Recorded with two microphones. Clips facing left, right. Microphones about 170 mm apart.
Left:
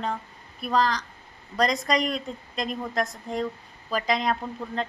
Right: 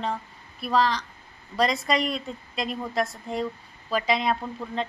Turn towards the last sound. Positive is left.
turn(degrees=-5)  # may be behind; listen again after turning